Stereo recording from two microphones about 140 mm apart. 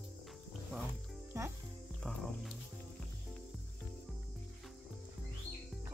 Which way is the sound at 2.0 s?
5° left (ahead or behind).